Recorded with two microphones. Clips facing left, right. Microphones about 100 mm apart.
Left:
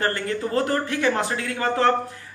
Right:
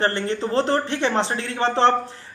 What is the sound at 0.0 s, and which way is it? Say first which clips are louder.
Speech: right 2 dB; 30° right (ahead or behind).